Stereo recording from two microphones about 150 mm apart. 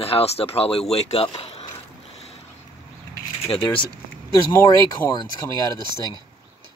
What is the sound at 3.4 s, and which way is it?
Speech, 35° left (ahead or behind).